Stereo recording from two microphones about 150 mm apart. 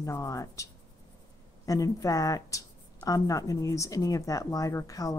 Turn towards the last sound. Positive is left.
turn(degrees=25)  # may be behind; listen again after turning